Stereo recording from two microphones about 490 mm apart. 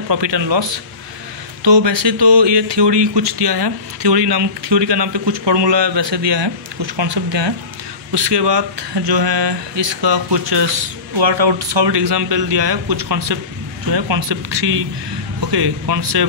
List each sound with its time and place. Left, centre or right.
0.1 s speech: right